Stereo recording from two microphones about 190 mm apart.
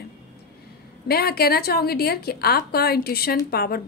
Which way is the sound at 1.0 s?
55° left (ahead or behind).